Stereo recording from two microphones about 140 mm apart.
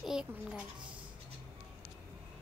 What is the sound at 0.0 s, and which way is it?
Speech, 5° right (ahead or behind).